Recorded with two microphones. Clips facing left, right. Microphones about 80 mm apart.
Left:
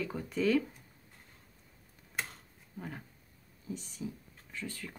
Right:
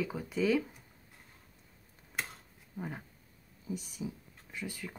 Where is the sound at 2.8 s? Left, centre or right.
Centre.